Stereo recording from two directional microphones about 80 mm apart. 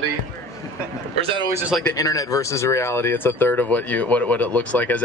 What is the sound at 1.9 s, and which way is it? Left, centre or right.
Speech, left.